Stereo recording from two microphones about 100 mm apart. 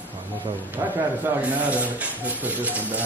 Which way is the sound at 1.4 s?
15° right (ahead or behind).